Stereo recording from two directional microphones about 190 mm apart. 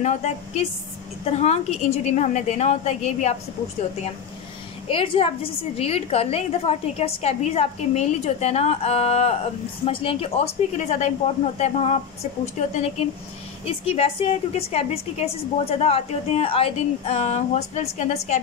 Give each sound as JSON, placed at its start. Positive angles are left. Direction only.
{"t": 0.0, "sound": "a woman's voice", "side_deg": 35}
{"t": 4.8, "sound": "a woman's voice", "side_deg": 30}